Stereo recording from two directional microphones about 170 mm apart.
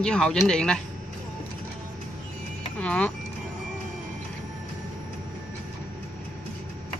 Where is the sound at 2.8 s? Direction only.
5° left (ahead or behind).